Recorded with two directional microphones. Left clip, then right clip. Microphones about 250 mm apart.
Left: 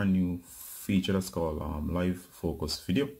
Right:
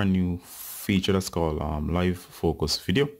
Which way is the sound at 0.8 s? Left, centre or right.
Right.